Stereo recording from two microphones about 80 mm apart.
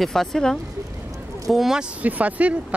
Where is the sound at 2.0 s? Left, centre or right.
Centre.